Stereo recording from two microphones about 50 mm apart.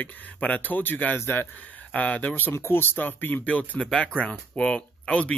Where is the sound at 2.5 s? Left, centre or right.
Left.